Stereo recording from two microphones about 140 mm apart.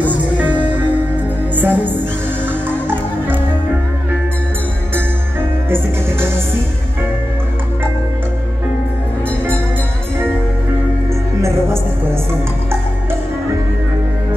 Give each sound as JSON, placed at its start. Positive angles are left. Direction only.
{"t": 0.0, "sound": "music", "side_deg": -10}
{"t": 1.6, "sound": "music", "side_deg": -15}
{"t": 5.7, "sound": "music", "side_deg": -15}